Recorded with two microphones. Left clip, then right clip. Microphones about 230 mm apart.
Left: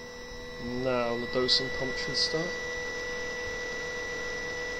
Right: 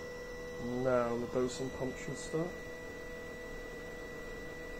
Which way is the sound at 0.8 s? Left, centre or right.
Left.